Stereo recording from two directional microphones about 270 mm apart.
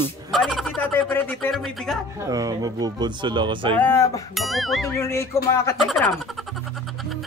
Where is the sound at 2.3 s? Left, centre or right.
Centre.